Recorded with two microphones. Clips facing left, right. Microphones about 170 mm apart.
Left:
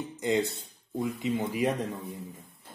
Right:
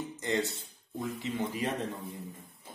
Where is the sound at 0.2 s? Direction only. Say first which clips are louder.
Left 5 dB; 15° left (ahead or behind).